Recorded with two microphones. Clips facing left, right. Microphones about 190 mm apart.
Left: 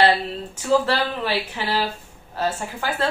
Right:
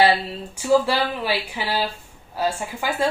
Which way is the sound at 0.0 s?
10° right (ahead or behind).